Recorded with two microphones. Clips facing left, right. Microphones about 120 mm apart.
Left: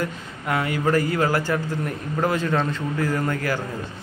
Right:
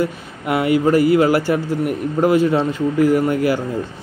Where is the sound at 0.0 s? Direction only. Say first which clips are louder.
Right 6 dB; 15° right (ahead or behind).